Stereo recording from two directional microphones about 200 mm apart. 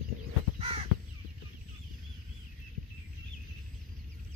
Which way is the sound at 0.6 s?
30° right (ahead or behind).